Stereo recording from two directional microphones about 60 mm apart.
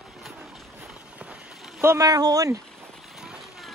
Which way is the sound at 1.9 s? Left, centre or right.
Right.